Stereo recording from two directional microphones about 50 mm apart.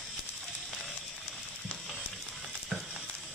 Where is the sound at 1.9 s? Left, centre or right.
Centre.